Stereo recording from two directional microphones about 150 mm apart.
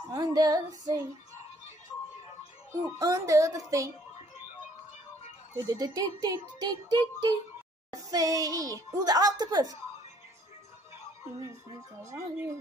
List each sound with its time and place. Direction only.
0.1 s music: 25° right (ahead or behind)
2.7 s a child's voice: 20° right (ahead or behind)
5.6 s a child's voice: 25° right (ahead or behind)
12.0 s speech: 20° right (ahead or behind)